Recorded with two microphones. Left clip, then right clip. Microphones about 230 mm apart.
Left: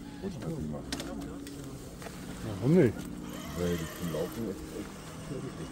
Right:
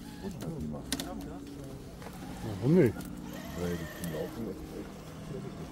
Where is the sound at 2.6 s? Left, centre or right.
Centre.